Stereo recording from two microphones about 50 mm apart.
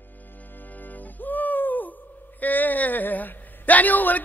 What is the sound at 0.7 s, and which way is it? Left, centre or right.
Music, left.